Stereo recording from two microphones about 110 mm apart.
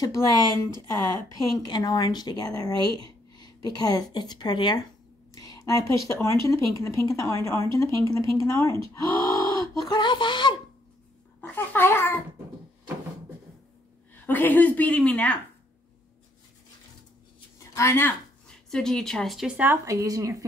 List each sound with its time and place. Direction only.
0.0 s speech: 35° left (ahead or behind)
1.5 s speech: 35° left (ahead or behind)
5.3 s a sound: 35° left (ahead or behind)
6.2 s speech: 30° left (ahead or behind); by 10.6 s 45° left (ahead or behind)
11.4 s babbling: 20° left (ahead or behind)
14.2 s a woman's voice: 15° left (ahead or behind)
17.7 s speech: 20° left (ahead or behind)
18.5 s a woman's voice: 5° left (ahead or behind); by 19.8 s 15° right (ahead or behind)
19.8 s speech: 30° right (ahead or behind)